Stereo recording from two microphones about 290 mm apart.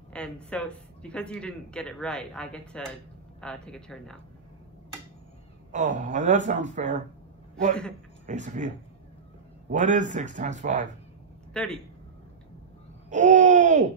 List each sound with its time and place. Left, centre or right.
0.1 s speech: centre
5.7 s speech: right
8.3 s speech: right
11.5 s a man's voice: centre
13.1 s speech: right